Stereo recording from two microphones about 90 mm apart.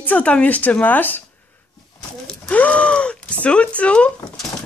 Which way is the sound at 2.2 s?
15° left (ahead or behind).